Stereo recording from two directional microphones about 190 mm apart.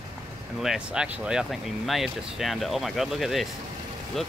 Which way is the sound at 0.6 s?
5° right (ahead or behind).